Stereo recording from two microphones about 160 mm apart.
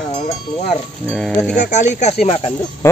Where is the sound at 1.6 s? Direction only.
50° left (ahead or behind).